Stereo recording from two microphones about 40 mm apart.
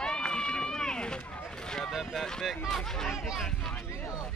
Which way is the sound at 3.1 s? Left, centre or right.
Centre.